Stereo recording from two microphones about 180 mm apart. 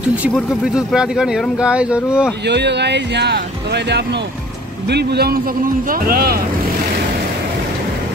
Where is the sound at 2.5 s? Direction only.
70° right (ahead or behind).